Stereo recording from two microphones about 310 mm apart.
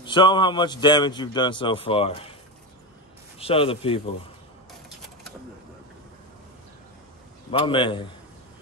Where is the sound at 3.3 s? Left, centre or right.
Centre.